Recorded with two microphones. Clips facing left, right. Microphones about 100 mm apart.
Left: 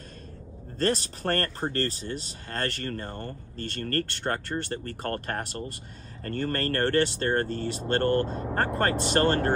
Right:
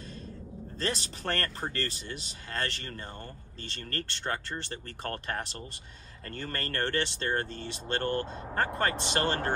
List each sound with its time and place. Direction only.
0.7 s speech: 45° left (ahead or behind)